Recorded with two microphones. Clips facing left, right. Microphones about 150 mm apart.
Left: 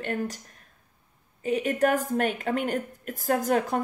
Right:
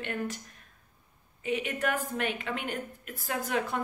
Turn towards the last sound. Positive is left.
turn(degrees=40)  # may be behind; listen again after turning